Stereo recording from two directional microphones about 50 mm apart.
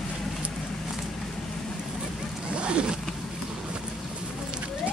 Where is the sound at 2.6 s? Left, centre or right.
Right.